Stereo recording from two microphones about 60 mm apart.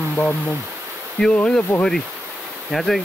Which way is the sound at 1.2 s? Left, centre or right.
Left.